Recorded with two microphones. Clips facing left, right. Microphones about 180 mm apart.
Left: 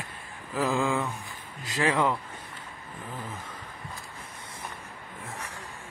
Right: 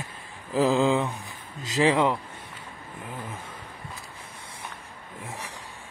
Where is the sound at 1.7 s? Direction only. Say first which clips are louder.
Right 4 dB; 20° right (ahead or behind).